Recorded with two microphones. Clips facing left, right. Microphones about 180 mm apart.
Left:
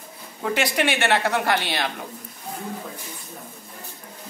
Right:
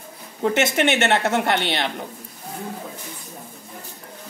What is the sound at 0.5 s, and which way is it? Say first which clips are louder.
Speech: right 2 dB; 20° right (ahead or behind).